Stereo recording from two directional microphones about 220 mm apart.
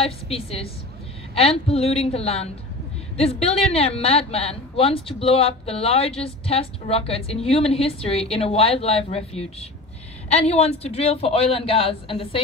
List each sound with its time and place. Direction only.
0.0 s speech: 25° left (ahead or behind)